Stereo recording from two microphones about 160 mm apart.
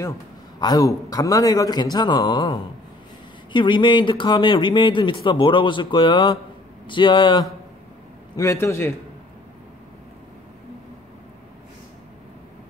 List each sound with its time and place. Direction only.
0.6 s a man's voice: 25° left (ahead or behind)
8.4 s a man's voice: 20° left (ahead or behind)